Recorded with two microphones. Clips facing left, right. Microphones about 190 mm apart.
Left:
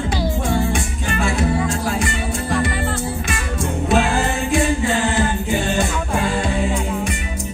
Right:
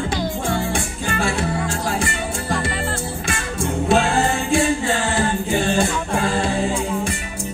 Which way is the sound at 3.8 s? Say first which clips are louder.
Right 1 dB; 30° right (ahead or behind).